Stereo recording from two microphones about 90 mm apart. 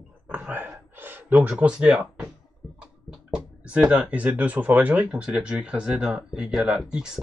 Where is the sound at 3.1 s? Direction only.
5° right (ahead or behind).